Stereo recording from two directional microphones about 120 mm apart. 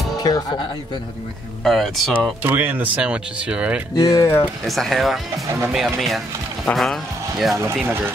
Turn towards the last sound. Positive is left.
turn(degrees=-25)  # may be behind; listen again after turning